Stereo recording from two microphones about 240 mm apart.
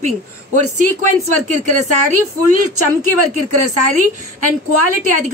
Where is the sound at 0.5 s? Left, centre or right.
Right.